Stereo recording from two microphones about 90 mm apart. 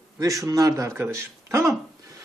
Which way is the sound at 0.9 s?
25° right (ahead or behind).